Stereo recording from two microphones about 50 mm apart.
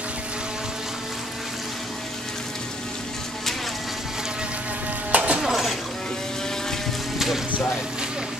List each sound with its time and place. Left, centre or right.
5.1 s a sound: right
5.4 s dishes: centre
7.2 s music: centre